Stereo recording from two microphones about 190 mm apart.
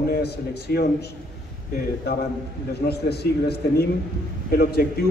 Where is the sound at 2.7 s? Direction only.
60° left (ahead or behind).